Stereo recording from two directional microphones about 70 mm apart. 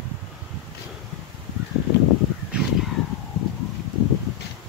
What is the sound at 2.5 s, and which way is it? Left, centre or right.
Crow, centre.